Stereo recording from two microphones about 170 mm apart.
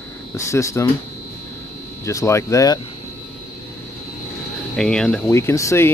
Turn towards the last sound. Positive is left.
turn(degrees=15)  # may be behind; listen again after turning